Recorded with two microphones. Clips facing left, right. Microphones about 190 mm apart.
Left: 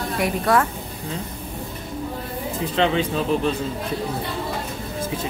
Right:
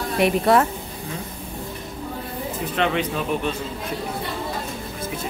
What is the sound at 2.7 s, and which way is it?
Speech, 30° left (ahead or behind).